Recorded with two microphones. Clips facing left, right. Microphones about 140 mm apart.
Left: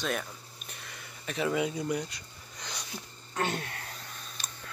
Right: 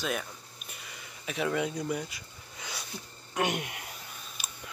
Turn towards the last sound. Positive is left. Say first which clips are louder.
# even
turn(degrees=-10)  # may be behind; listen again after turning